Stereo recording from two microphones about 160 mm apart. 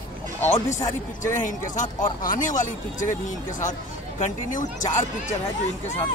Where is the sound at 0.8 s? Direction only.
20° left (ahead or behind).